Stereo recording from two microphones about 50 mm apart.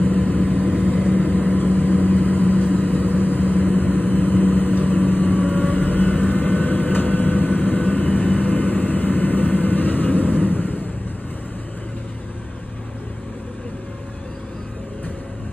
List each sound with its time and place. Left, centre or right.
0.0 s vehicle: left